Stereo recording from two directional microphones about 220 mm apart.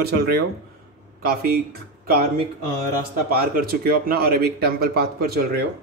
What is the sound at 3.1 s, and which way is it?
Speech, 40° right (ahead or behind).